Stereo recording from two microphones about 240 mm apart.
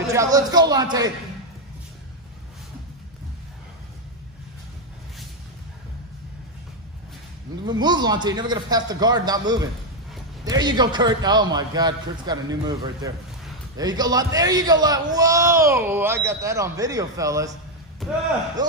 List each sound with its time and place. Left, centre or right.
0.1 s a man's voice: centre
7.6 s a man's voice: centre
18.0 s speech: centre
18.6 s a man's voice: centre